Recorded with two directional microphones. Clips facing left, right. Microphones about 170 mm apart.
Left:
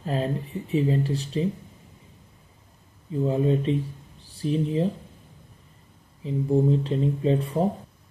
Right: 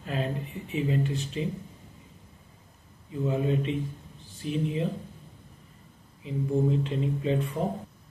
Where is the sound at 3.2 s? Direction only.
35° left (ahead or behind).